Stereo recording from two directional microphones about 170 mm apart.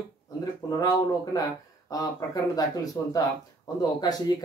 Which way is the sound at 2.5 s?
20° left (ahead or behind).